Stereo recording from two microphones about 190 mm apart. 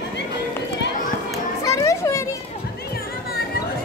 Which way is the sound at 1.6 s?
15° left (ahead or behind).